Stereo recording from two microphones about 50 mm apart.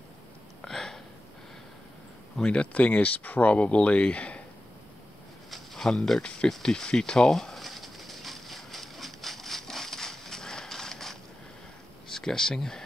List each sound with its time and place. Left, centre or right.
0.6 s hiccup: centre
2.3 s speech: centre
5.5 s a sound: centre
12.1 s speech: centre